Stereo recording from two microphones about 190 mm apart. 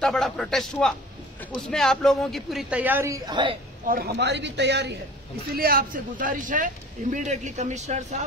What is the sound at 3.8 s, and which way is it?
A man's voice, 50° right (ahead or behind).